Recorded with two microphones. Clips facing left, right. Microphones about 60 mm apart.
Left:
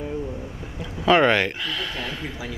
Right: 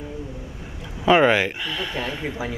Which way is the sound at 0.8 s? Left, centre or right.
Centre.